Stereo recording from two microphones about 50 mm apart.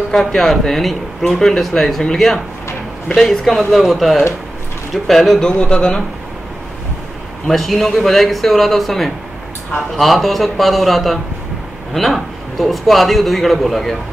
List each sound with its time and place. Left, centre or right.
0.1 s a man's voice: centre
5.4 s speech: centre
7.4 s a man's voice: centre